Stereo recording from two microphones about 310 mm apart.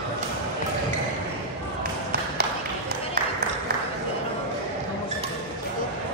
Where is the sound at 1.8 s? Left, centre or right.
Right.